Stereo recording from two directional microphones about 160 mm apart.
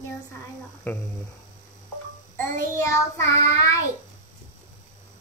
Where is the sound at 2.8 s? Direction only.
20° left (ahead or behind).